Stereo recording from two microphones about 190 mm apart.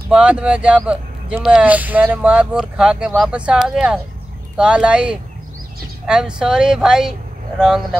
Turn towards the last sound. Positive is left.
turn(degrees=-5)  # may be behind; listen again after turning